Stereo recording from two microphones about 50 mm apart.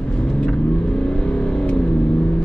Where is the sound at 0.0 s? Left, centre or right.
Left.